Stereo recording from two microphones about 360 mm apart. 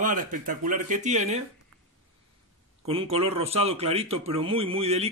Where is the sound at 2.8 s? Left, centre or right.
Centre.